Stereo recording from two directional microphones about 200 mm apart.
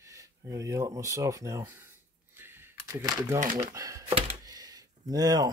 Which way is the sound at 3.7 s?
15° right (ahead or behind).